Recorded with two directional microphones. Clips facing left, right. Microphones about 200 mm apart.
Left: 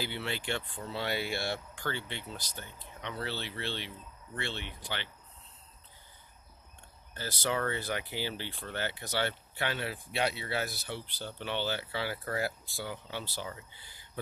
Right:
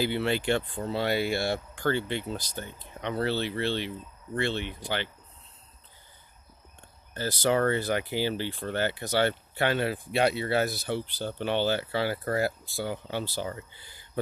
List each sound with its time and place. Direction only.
0.0 s speech: 50° right (ahead or behind)
7.2 s speech: 40° right (ahead or behind)